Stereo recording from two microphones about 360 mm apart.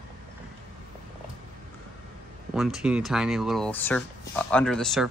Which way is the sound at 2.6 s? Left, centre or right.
Centre.